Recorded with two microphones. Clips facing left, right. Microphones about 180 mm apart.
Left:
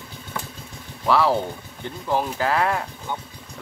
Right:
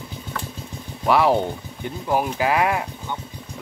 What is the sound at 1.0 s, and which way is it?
Speech, 15° right (ahead or behind).